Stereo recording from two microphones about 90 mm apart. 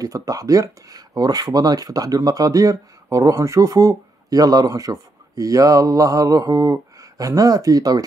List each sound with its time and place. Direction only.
0.0 s speech: 40° right (ahead or behind)